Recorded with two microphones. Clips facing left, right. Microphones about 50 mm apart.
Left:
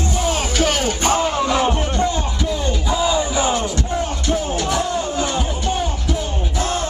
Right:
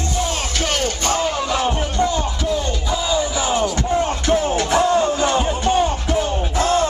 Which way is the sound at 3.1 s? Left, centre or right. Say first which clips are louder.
Left 1 dB; left.